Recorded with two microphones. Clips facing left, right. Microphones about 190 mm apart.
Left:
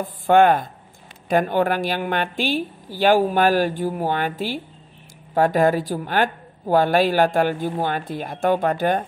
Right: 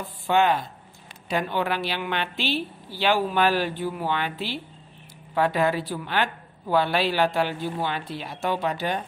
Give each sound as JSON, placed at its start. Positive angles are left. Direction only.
{"t": 0.0, "sound": "speech", "side_deg": 50}